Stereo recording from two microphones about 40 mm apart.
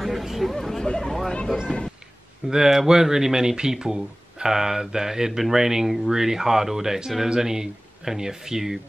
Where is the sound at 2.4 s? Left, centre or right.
Centre.